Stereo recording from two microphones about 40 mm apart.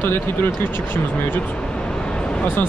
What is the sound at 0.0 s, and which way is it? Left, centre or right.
Speech, left.